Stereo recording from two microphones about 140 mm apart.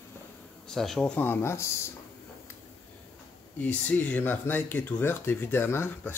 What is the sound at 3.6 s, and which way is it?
Speech, 10° left (ahead or behind).